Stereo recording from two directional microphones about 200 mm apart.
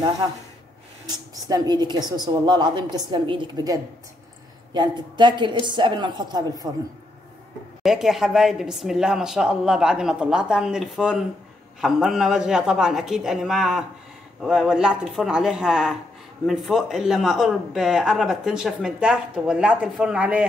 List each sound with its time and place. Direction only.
1.0 s a woman's voice: 20° right (ahead or behind)
7.8 s speech: centre (ahead or behind)